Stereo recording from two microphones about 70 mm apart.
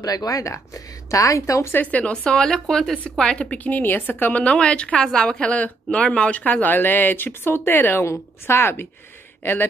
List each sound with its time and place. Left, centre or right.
0.0 s speech: left
1.8 s speech: left
3.5 s a woman's voice: left
8.0 s a woman's voice: left